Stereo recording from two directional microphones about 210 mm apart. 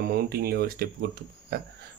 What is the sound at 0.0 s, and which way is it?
Speech, 45° right (ahead or behind).